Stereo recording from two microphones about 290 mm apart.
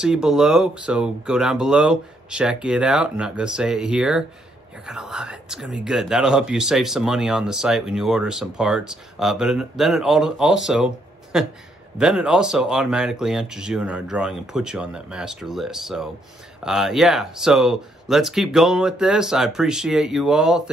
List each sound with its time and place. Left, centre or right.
0.0 s speech: centre